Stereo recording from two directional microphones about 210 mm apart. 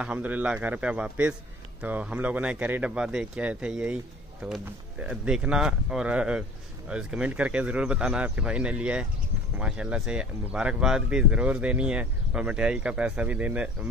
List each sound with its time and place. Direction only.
0.0 s a man's voice: 5° right (ahead or behind)
5.0 s speech: 5° right (ahead or behind)